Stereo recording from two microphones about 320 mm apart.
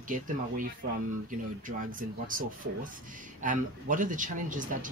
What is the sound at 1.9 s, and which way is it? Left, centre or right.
Speech, right.